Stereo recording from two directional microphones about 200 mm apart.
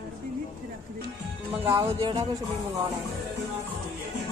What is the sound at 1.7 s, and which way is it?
Music, 25° right (ahead or behind).